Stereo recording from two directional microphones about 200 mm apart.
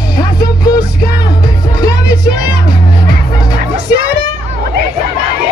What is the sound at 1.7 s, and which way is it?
Music, 20° left (ahead or behind).